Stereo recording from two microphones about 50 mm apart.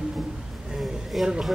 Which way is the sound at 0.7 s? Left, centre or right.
Centre.